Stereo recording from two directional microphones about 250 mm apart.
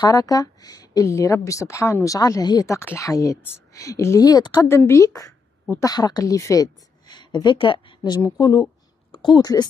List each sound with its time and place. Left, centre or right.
0.0 s a woman's voice: centre